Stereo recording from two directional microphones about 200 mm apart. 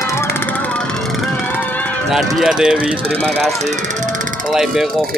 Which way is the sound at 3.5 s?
35° right (ahead or behind).